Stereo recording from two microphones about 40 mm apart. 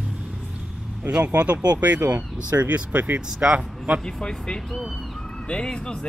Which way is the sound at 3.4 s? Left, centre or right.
Right.